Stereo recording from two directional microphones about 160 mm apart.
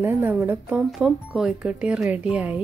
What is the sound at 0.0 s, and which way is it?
A woman's voice, 15° right (ahead or behind).